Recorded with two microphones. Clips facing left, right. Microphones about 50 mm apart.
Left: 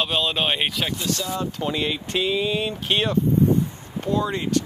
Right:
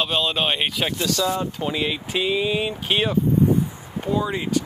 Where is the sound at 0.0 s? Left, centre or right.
Centre.